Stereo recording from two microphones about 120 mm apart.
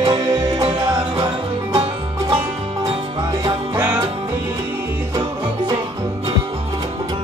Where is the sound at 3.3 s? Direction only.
30° right (ahead or behind).